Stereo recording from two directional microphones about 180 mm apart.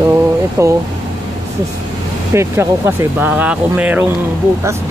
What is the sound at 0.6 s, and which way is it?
Speech, 15° right (ahead or behind).